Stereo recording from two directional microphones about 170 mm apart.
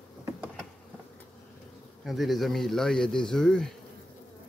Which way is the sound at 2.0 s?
Centre (ahead or behind).